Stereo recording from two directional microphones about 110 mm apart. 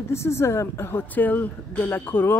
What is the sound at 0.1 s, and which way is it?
Speech, 25° left (ahead or behind).